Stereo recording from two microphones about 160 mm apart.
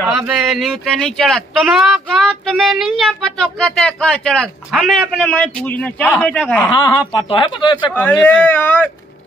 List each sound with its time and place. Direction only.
0.0 s a man's voice: 5° right (ahead or behind)
6.7 s speech: 25° left (ahead or behind)
7.9 s a man's voice: 10° left (ahead or behind)